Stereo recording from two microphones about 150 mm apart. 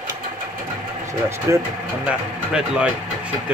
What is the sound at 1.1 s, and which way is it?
Speech, 20° right (ahead or behind).